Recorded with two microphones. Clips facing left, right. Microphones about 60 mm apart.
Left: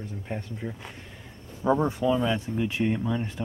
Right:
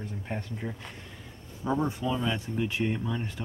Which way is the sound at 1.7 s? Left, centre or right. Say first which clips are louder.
Left 5 dB; left.